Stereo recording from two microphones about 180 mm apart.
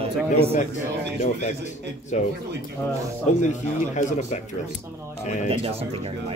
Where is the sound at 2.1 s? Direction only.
40° left (ahead or behind).